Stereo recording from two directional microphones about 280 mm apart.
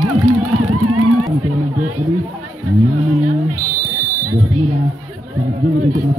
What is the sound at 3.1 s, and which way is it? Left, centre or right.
Music, right.